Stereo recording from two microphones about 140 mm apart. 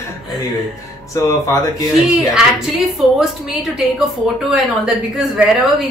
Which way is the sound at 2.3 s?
5° right (ahead or behind).